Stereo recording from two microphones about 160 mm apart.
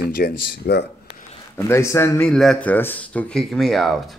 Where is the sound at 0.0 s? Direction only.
70° left (ahead or behind).